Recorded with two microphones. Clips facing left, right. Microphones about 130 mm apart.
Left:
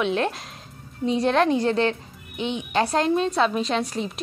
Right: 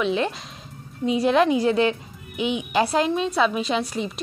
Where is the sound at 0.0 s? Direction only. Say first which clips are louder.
Even; centre (ahead or behind).